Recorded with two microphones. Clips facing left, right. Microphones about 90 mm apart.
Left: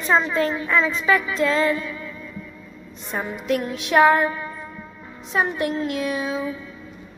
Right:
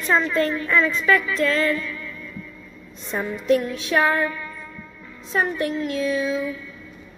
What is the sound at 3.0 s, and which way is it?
A woman's voice, 15° left (ahead or behind).